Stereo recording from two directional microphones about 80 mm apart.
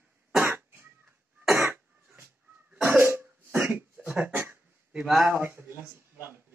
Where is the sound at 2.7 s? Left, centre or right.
Right.